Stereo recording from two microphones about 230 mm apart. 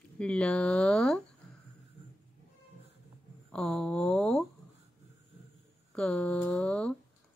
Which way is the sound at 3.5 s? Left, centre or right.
Centre.